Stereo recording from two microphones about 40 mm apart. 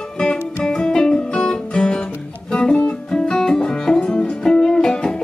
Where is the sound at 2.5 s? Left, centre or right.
Left.